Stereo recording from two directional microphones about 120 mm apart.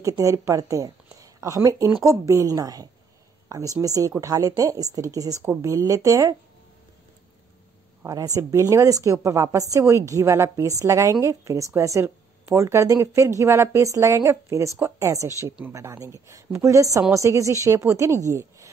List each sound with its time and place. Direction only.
0.0 s a woman's voice: 25° right (ahead or behind)
8.0 s a woman's voice: 30° right (ahead or behind)